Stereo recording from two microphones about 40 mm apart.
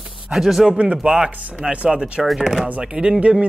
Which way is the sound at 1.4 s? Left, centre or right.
Right.